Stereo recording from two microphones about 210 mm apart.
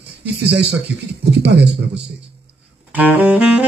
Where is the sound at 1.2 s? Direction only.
55° right (ahead or behind).